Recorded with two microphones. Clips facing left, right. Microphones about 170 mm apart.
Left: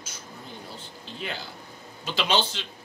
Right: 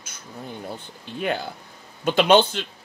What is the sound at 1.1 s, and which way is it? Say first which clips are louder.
Speech: right 10 dB; 55° right (ahead or behind).